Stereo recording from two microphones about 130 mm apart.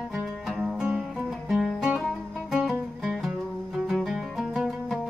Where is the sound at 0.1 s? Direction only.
Centre (ahead or behind).